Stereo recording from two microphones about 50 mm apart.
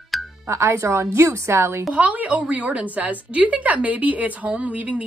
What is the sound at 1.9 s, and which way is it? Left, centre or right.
A woman's voice, right.